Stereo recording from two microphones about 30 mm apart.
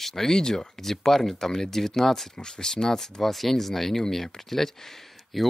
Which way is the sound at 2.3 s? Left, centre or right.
Left.